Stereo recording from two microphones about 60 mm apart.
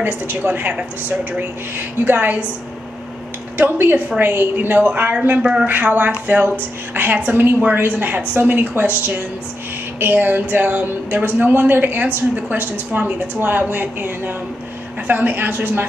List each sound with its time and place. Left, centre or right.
0.0 s a woman's voice: right
3.5 s a woman's voice: right
5.4 s speech: centre
5.7 s a woman's voice: right
7.3 s a woman's voice: right